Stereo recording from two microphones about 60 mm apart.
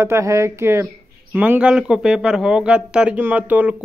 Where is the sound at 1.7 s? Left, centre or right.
Centre.